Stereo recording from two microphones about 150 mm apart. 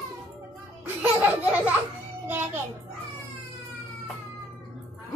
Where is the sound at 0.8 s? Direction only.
10° right (ahead or behind).